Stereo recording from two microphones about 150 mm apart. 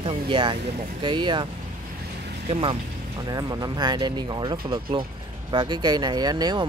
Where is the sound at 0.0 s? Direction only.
35° right (ahead or behind).